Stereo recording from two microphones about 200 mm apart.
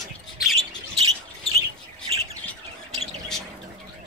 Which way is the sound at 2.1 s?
30° right (ahead or behind).